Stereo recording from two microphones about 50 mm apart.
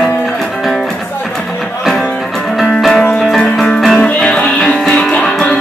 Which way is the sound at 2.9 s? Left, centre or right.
Centre.